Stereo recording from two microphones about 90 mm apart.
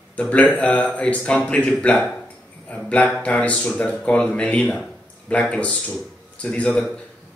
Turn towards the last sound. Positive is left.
turn(degrees=15)  # may be behind; listen again after turning